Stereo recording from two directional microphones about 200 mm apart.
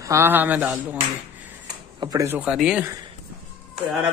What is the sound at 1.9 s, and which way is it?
Speech, 15° right (ahead or behind).